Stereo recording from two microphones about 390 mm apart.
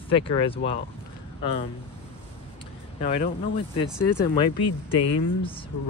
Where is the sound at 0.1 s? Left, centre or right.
Centre.